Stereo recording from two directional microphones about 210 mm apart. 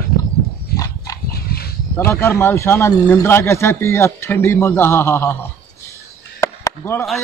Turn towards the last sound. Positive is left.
turn(degrees=15)  # may be behind; listen again after turning